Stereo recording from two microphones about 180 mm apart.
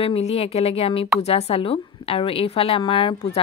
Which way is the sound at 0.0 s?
35° left (ahead or behind).